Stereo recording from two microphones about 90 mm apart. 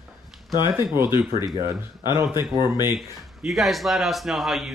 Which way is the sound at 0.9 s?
25° right (ahead or behind).